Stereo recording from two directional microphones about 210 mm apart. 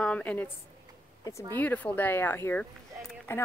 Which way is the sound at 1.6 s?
5° left (ahead or behind).